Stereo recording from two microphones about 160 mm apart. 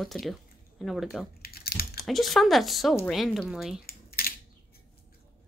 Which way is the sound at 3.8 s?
70° left (ahead or behind).